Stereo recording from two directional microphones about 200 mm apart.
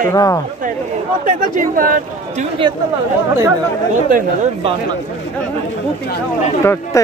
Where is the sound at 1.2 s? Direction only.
40° right (ahead or behind).